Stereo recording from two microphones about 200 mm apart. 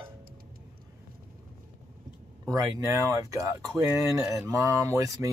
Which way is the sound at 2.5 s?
15° right (ahead or behind).